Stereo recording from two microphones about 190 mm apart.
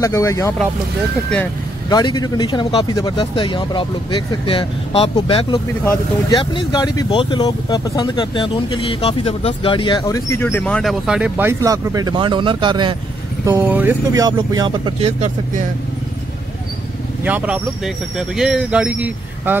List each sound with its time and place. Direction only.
0.0 s speech: 15° left (ahead or behind)
1.9 s speech: 20° left (ahead or behind); by 12.9 s 25° right (ahead or behind)
13.5 s speech: 10° right (ahead or behind); by 15.6 s 40° right (ahead or behind)
17.2 s speech: 5° right (ahead or behind)